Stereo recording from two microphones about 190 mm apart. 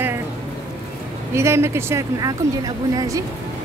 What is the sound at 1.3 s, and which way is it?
Speech, 15° right (ahead or behind).